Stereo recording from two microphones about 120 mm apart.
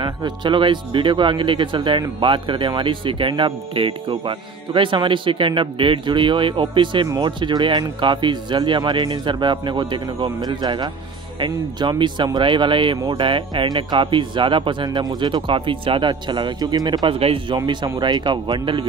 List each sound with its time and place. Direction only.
0.0 s speech: 40° right (ahead or behind)
17.2 s speech: 50° right (ahead or behind)
17.6 s speech: 40° right (ahead or behind)